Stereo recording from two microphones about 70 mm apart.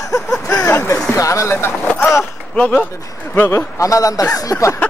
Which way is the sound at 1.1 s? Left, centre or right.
Left.